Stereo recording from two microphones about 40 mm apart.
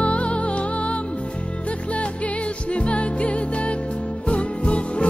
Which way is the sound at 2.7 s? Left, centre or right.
Left.